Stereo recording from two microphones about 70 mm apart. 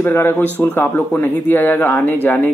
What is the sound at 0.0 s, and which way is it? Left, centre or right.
Speech, left.